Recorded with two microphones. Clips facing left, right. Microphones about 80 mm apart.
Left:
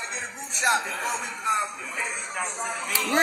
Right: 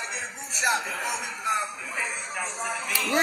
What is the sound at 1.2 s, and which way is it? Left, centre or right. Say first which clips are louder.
Speech: left 1 dB; left.